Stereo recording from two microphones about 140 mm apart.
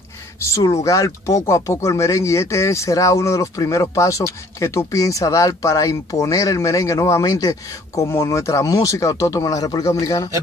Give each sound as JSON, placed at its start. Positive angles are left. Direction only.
{"t": 0.4, "sound": "speech", "side_deg": 20}